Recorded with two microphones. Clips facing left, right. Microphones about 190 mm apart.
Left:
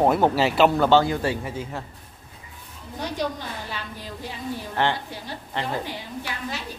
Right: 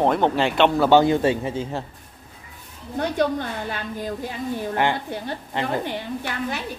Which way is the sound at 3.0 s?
55° right (ahead or behind).